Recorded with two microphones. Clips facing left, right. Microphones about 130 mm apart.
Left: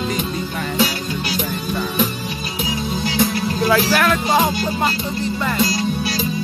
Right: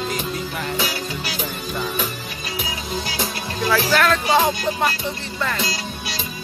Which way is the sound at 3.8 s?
10° left (ahead or behind).